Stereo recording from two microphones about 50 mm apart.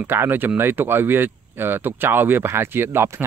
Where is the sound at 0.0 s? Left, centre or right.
Right.